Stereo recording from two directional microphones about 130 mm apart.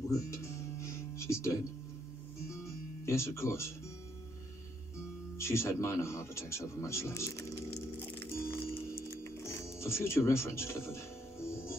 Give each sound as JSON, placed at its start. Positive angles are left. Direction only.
{"t": 0.3, "sound": "music", "side_deg": 20}
{"t": 3.1, "sound": "speech", "side_deg": 20}
{"t": 5.4, "sound": "music", "side_deg": 20}